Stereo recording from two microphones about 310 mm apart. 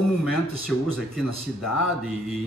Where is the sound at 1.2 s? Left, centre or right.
Left.